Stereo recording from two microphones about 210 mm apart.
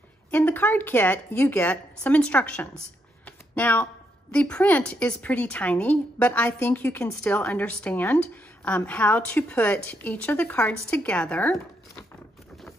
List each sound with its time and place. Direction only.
0.3 s a woman's voice: 10° left (ahead or behind)
3.3 s a sound: 10° left (ahead or behind)
4.3 s a woman's voice: 5° left (ahead or behind)